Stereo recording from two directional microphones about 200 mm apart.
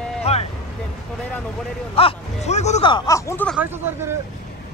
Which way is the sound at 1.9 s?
30° left (ahead or behind).